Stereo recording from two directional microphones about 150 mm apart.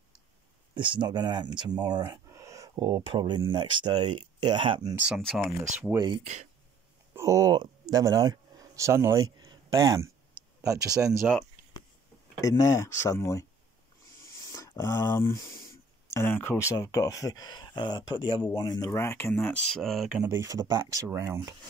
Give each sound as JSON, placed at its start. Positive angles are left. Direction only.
{"t": 0.7, "sound": "speech", "side_deg": -35}
{"t": 4.9, "sound": "speech", "side_deg": -5}
{"t": 5.9, "sound": "speech", "side_deg": -30}
{"t": 10.8, "sound": "speech", "side_deg": -5}
{"t": 12.4, "sound": "speech", "side_deg": 25}
{"t": 20.2, "sound": "speech", "side_deg": -20}